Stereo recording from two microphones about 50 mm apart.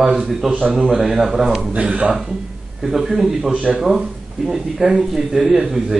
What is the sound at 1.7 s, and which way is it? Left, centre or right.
Speech, right.